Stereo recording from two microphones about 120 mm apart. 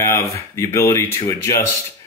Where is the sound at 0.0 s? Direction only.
20° left (ahead or behind).